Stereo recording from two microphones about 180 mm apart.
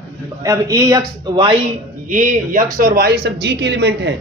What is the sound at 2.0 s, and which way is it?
A man's voice, 45° right (ahead or behind).